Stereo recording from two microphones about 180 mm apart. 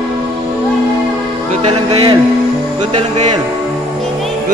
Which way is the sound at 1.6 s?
35° right (ahead or behind).